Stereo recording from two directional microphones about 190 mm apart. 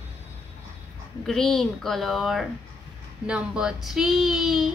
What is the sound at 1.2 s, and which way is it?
A woman's voice, 5° left (ahead or behind).